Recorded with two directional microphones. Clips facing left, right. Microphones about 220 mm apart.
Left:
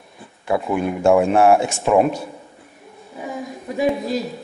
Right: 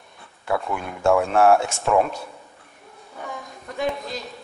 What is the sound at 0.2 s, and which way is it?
Speech, 15° left (ahead or behind).